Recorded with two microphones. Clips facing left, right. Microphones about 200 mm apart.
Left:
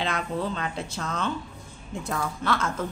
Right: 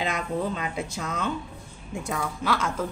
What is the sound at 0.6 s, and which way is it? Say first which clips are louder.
A woman's voice: right 1 dB; 10° right (ahead or behind).